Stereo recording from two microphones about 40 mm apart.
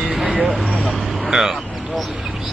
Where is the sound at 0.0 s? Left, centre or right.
Centre.